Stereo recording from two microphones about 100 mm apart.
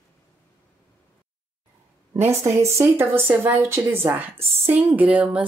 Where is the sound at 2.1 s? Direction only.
25° right (ahead or behind).